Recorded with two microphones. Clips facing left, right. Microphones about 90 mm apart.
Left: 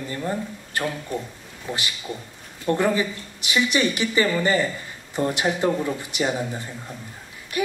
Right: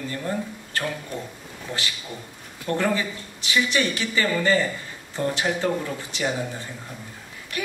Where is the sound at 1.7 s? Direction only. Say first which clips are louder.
Left 2 dB; 15° left (ahead or behind).